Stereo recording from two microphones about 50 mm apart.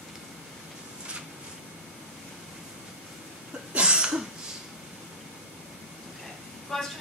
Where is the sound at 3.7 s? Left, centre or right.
Centre.